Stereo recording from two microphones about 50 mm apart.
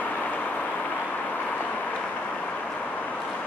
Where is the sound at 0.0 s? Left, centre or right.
Left.